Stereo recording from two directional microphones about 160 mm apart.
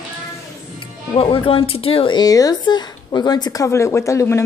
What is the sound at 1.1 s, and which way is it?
Speech, 35° left (ahead or behind).